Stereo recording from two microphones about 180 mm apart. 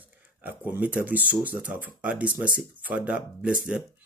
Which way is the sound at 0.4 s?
10° right (ahead or behind).